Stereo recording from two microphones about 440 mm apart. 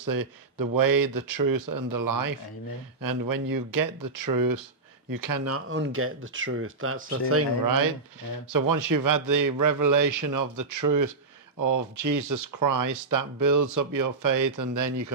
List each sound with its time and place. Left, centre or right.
0.0 s a man's voice: right
7.6 s a man's voice: right